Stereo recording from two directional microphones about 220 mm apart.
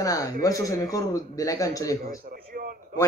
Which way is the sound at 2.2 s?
40° right (ahead or behind).